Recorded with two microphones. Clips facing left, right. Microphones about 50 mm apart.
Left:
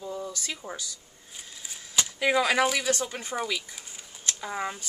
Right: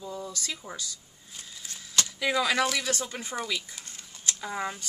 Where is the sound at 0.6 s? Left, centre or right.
Left.